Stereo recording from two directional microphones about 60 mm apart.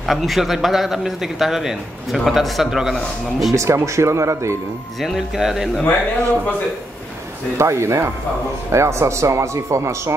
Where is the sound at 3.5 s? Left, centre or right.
Right.